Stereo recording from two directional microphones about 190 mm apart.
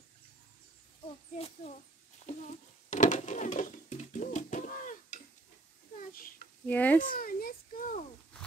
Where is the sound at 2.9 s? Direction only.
40° left (ahead or behind).